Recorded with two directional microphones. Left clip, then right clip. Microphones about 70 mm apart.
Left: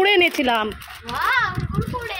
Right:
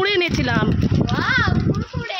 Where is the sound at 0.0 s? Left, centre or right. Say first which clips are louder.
Left 3 dB; centre.